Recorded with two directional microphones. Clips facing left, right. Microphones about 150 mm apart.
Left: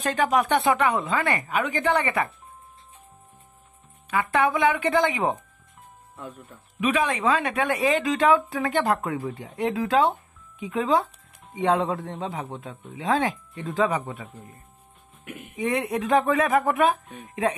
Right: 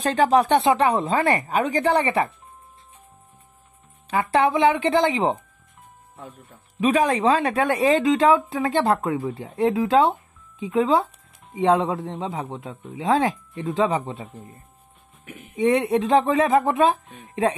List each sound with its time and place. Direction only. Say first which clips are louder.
0.0 s a woman's voice: right 4 dB; 30° right (ahead or behind)
4.1 s speech: right 3 dB; 30° right (ahead or behind)
6.8 s a woman's voice: right 4 dB; 35° right (ahead or behind)
8.0 s speech: right 3 dB; 25° right (ahead or behind)